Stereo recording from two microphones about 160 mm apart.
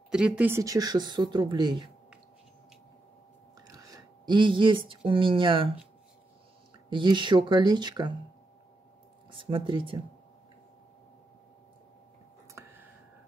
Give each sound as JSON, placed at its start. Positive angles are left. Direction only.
{"t": 0.1, "sound": "speech", "side_deg": -5}
{"t": 0.6, "sound": "speech", "side_deg": -20}
{"t": 3.6, "sound": "speech", "side_deg": -20}
{"t": 6.9, "sound": "speech", "side_deg": -30}
{"t": 9.3, "sound": "speech", "side_deg": -30}
{"t": 12.6, "sound": "a sound", "side_deg": -20}